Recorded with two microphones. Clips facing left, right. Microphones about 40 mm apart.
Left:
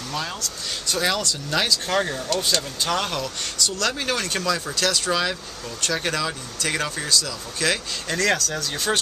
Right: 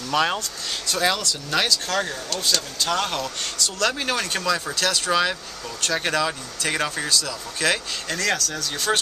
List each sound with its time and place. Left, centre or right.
0.1 s speech: right
0.8 s speech: centre
1.9 s speech: centre
2.9 s speech: centre
8.2 s speech: centre